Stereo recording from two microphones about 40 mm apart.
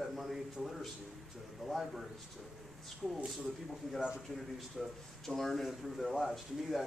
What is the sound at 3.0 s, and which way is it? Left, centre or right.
Speech, centre.